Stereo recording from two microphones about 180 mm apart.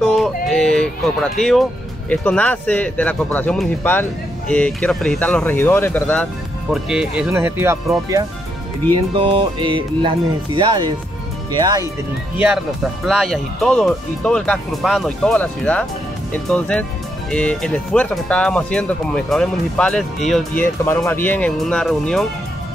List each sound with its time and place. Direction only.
0.0 s music: centre (ahead or behind)
2.0 s speech: 10° left (ahead or behind)
6.7 s speech: 5° right (ahead or behind)
9.1 s speech: 30° right (ahead or behind)
13.0 s speech: centre (ahead or behind)